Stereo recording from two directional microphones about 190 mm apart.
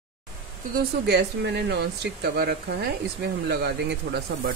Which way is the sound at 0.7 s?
60° right (ahead or behind).